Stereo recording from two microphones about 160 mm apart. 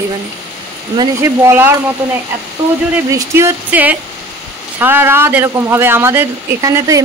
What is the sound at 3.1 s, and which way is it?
Speech, 15° right (ahead or behind).